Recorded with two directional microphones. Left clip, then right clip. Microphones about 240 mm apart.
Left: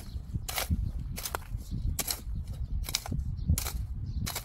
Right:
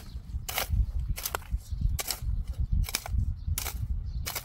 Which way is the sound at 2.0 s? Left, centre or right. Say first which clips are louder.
Right 1 dB; centre.